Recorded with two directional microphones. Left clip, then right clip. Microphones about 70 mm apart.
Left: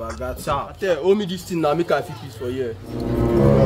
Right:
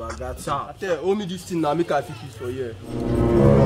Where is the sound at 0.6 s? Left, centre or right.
Centre.